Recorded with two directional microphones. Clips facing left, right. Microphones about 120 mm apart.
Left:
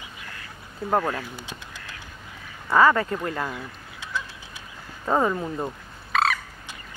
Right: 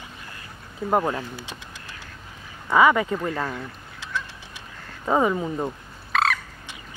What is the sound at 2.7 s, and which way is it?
Speech, 5° right (ahead or behind).